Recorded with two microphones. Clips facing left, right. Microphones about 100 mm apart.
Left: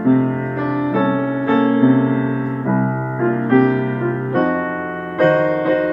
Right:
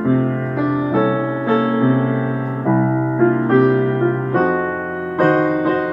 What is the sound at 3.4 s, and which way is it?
Music, 25° right (ahead or behind).